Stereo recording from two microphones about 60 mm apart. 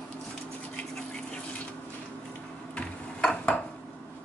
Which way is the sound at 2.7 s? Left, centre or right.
Centre.